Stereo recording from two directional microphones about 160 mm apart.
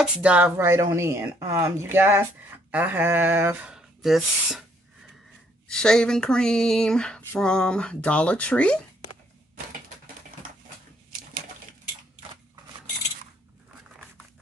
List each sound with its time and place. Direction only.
0.0 s speech: 10° right (ahead or behind)
5.7 s speech: 5° left (ahead or behind)